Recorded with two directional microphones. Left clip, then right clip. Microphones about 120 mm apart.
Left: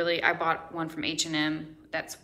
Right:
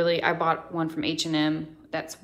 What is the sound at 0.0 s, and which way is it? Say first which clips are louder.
Speech: right 3 dB; 45° right (ahead or behind).